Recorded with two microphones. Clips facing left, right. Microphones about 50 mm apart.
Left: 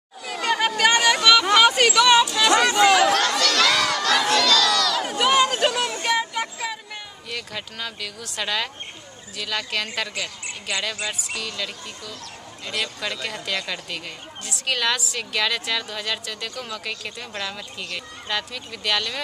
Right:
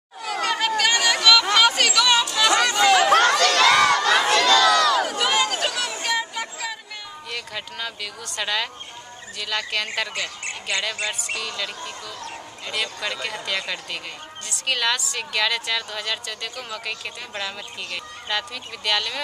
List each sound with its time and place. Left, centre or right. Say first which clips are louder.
0.4 s chatter: left 2 dB; centre
2.2 s a sound: left 1 dB; centre
3.1 s crowd: right 4 dB; right
5.0 s chatter: left 3 dB; centre
6.0 s a sound: left 2 dB; centre
7.2 s speech: even; centre